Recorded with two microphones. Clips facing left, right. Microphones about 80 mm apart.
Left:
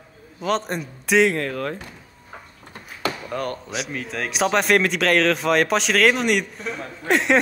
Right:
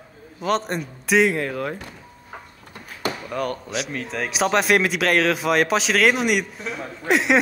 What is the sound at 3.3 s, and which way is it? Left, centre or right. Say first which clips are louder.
Speech: right 4 dB; left.